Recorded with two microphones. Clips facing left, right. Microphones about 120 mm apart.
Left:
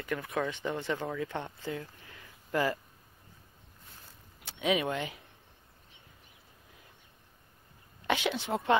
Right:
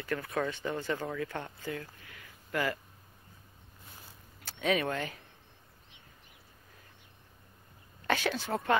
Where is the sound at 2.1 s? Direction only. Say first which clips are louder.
Left 3 dB; 25° left (ahead or behind).